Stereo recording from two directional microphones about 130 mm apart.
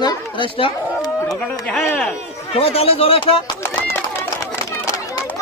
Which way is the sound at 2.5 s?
50° left (ahead or behind).